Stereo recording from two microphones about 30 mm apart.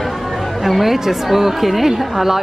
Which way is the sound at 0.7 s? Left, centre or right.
Centre.